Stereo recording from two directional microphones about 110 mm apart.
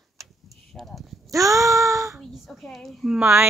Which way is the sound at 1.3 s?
30° right (ahead or behind).